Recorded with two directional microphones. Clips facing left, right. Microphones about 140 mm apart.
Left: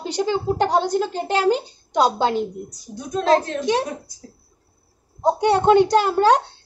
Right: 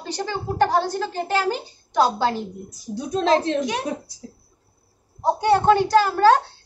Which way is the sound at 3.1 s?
25° right (ahead or behind).